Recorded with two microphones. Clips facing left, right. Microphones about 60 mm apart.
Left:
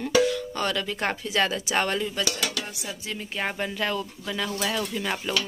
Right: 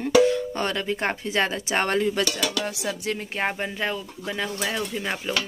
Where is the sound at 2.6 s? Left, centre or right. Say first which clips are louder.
Right 7 dB; right.